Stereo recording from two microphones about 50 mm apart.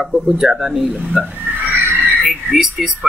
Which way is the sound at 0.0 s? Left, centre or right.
Centre.